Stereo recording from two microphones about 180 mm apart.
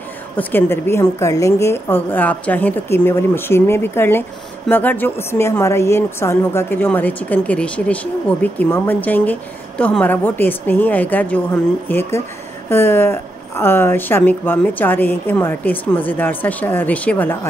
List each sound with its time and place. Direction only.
0.4 s a woman's voice: 10° left (ahead or behind)